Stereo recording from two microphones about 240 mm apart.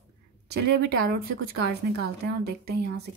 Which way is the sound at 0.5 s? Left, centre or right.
Right.